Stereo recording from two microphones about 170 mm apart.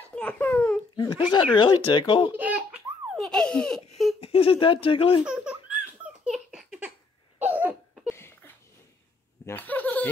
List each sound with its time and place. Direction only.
0.0 s speech: 10° left (ahead or behind)
0.9 s speech: 30° left (ahead or behind)
2.3 s baby laughter: 10° right (ahead or behind)
4.2 s speech: 35° left (ahead or behind)
5.2 s baby laughter: 5° right (ahead or behind)
6.2 s a sound: centre (ahead or behind)
7.3 s cough: 10° right (ahead or behind)
8.1 s a sound: 15° left (ahead or behind)
9.5 s speech: 10° left (ahead or behind)